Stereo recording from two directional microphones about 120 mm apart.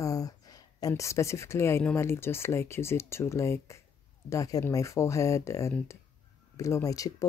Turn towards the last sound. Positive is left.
turn(degrees=30)  # may be behind; listen again after turning